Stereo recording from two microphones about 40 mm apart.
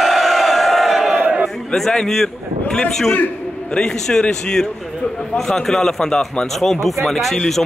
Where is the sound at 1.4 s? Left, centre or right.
Centre.